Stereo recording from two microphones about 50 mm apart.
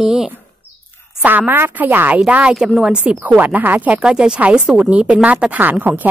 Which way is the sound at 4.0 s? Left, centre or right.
Centre.